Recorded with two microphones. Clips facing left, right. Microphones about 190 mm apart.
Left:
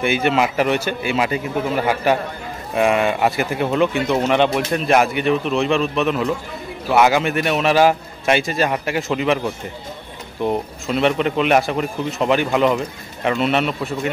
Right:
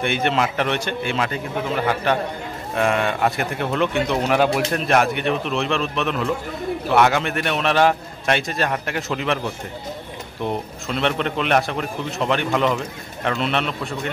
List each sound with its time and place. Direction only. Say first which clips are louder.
0.0 s a man's voice: left 3 dB; 5° left (ahead or behind)
10.4 s speech: left 5 dB; 5° left (ahead or behind)